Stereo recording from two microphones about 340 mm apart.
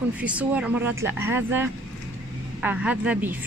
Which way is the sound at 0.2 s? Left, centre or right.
Centre.